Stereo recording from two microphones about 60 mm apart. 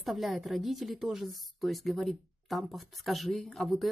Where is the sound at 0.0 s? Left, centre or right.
Centre.